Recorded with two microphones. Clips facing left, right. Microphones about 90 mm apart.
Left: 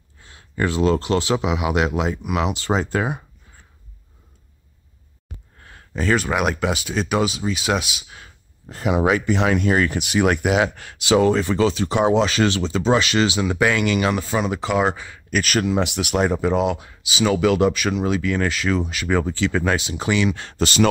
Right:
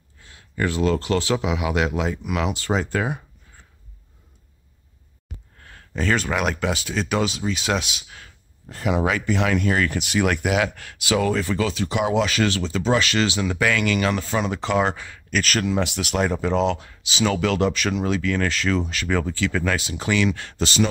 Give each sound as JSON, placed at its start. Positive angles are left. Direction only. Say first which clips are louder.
{"t": 0.3, "sound": "speech", "louder": "left 2 dB", "side_deg": 25}
{"t": 5.7, "sound": "speech", "louder": "left 2 dB", "side_deg": 10}
{"t": 8.2, "sound": "speech", "louder": "left 1 dB", "side_deg": 20}
{"t": 20.5, "sound": "speech", "louder": "left 3 dB", "side_deg": 55}